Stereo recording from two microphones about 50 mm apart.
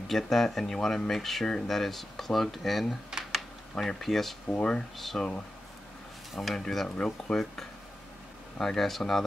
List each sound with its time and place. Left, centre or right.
0.1 s speech: centre
3.1 s a sound: centre
3.8 s speech: centre
4.6 s speech: centre
4.9 s speech: centre
6.5 s speech: centre